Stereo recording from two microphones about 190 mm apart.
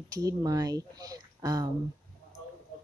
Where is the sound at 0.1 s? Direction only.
15° right (ahead or behind).